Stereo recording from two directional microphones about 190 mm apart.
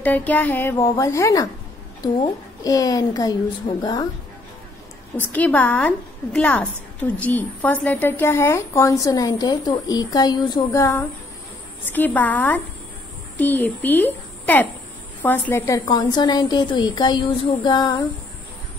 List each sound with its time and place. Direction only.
0.0 s a woman's voice: 10° left (ahead or behind)
5.2 s a woman's voice: 10° left (ahead or behind)